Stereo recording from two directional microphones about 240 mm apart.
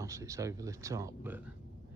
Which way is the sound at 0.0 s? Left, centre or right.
Centre.